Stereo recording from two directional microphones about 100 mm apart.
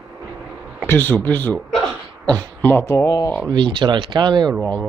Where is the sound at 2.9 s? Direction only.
30° left (ahead or behind).